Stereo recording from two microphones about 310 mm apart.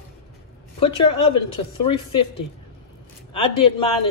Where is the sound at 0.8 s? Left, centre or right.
Centre.